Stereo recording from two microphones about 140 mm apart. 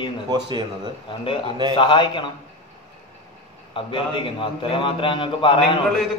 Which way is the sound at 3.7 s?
35° left (ahead or behind).